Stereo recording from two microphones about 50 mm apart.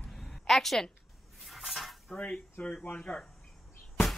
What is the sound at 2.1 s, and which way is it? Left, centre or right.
Speech, centre.